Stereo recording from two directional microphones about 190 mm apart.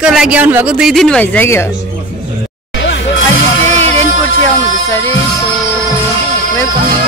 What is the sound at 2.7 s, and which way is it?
Music, 70° left (ahead or behind).